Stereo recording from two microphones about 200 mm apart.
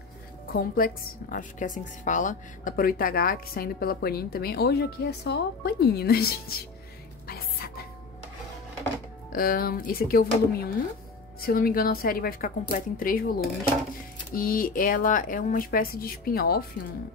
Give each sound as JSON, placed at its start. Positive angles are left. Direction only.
{"t": 0.5, "sound": "a woman's voice", "side_deg": 45}
{"t": 7.2, "sound": "music", "side_deg": 50}
{"t": 9.3, "sound": "a woman's voice", "side_deg": 45}